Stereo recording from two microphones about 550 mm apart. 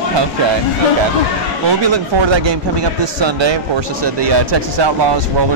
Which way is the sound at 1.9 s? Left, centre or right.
Right.